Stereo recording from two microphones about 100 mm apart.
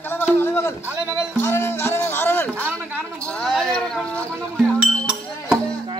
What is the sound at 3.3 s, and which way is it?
Speech, 5° left (ahead or behind).